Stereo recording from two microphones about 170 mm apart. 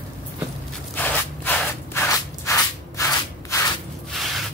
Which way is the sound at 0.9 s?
10° left (ahead or behind).